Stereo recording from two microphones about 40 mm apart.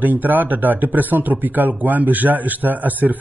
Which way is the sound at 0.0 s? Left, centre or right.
Right.